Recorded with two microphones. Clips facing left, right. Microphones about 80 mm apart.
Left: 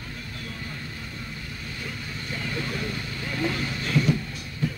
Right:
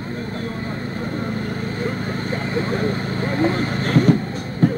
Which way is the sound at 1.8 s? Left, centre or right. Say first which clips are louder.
Right 11 dB; right.